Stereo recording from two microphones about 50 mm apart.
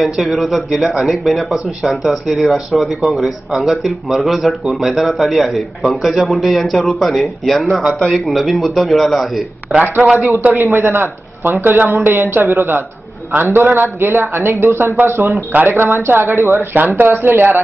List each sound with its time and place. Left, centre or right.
0.0 s speech: centre
10.4 s a woman's voice: right
15.0 s speech: right
15.7 s speech: right
16.1 s a woman's voice: right
16.3 s speech: right
16.7 s speech: right